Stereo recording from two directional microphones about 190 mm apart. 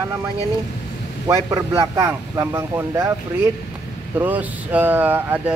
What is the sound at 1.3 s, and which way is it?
A man's voice, 15° right (ahead or behind).